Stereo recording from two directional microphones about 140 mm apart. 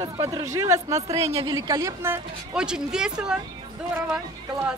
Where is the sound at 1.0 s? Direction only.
50° right (ahead or behind); by 2.2 s 20° right (ahead or behind).